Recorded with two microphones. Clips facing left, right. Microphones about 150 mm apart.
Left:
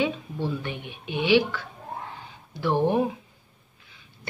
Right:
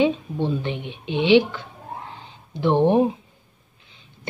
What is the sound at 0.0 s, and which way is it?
A woman's voice, 20° right (ahead or behind).